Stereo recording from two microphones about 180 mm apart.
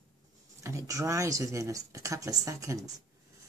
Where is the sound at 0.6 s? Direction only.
15° right (ahead or behind).